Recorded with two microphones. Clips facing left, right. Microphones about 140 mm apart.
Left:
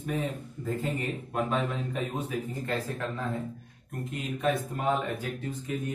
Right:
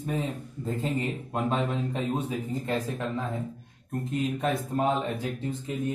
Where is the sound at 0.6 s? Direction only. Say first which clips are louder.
Right 2 dB; 25° right (ahead or behind).